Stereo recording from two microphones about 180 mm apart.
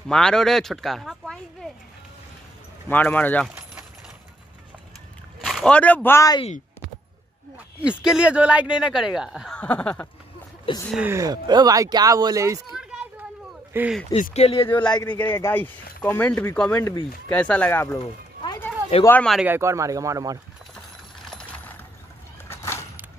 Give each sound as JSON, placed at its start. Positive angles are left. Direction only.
{"t": 0.1, "sound": "speech", "side_deg": 5}
{"t": 2.9, "sound": "speech", "side_deg": 10}
{"t": 3.4, "sound": "a sound", "side_deg": -5}
{"t": 5.4, "sound": "speech", "side_deg": 0}
{"t": 7.8, "sound": "speech", "side_deg": -5}
{"t": 10.7, "sound": "speech", "side_deg": 30}
{"t": 11.1, "sound": "speech", "side_deg": -20}
{"t": 12.7, "sound": "a sound", "side_deg": -5}
{"t": 13.7, "sound": "speech", "side_deg": -5}
{"t": 14.1, "sound": "speech", "side_deg": 35}
{"t": 15.1, "sound": "speech", "side_deg": 10}
{"t": 19.0, "sound": "speech", "side_deg": 5}
{"t": 19.4, "sound": "speech", "side_deg": -15}
{"t": 22.5, "sound": "a sound", "side_deg": 15}